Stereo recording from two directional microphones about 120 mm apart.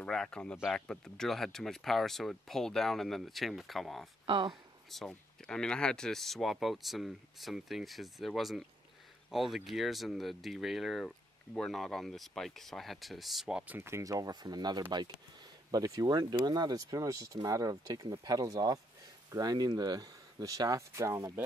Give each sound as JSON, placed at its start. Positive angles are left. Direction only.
{"t": 0.0, "sound": "speech", "side_deg": 5}
{"t": 4.3, "sound": "speech", "side_deg": -40}
{"t": 4.9, "sound": "speech", "side_deg": 5}
{"t": 13.7, "sound": "speech", "side_deg": -20}